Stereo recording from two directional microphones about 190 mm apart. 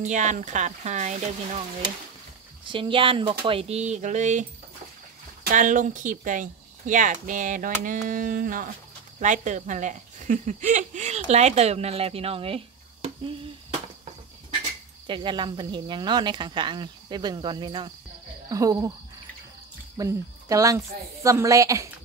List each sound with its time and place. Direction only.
0.0 s speech: 40° right (ahead or behind)
2.7 s speech: 25° right (ahead or behind)
15.0 s speech: 25° right (ahead or behind)
20.0 s speech: 15° right (ahead or behind)